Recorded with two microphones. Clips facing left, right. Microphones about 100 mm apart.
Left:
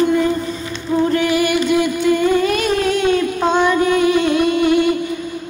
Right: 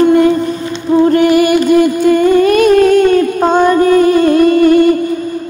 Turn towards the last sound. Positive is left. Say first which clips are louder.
# right 7 dB
turn(degrees=-45)  # may be behind; listen again after turning